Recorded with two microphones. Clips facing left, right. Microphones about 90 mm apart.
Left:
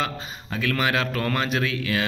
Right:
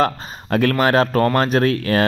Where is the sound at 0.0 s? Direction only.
50° right (ahead or behind).